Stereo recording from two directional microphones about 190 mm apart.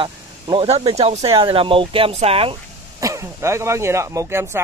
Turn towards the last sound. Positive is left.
turn(degrees=-15)  # may be behind; listen again after turning